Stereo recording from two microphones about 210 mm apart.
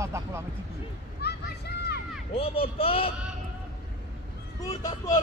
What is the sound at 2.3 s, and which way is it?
Speech, 25° left (ahead or behind).